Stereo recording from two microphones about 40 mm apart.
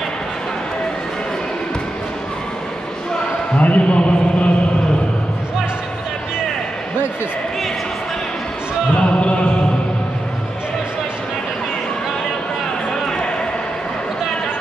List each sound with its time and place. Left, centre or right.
3.5 s speech: left
8.9 s music: left